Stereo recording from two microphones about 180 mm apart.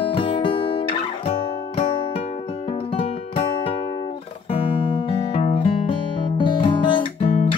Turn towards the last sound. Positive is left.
turn(degrees=30)  # may be behind; listen again after turning